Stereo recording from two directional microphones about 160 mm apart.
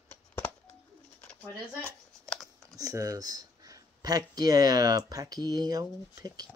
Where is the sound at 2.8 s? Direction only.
20° right (ahead or behind).